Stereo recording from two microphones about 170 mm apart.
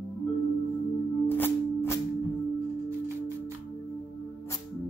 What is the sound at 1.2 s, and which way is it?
Music, 10° left (ahead or behind).